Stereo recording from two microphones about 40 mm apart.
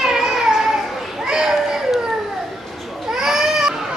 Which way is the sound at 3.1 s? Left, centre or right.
Centre.